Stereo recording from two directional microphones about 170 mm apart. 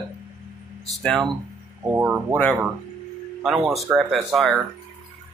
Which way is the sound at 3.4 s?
Centre (ahead or behind).